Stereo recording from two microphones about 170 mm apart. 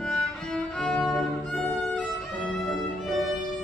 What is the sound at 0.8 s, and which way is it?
Music, centre (ahead or behind).